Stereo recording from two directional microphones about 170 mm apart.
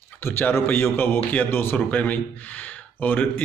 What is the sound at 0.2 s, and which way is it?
A man's voice, 15° left (ahead or behind).